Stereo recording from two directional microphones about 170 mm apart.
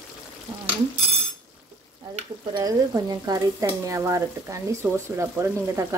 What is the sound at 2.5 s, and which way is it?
Speech, 20° right (ahead or behind).